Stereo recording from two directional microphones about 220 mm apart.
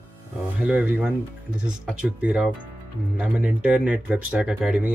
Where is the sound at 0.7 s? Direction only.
5° right (ahead or behind).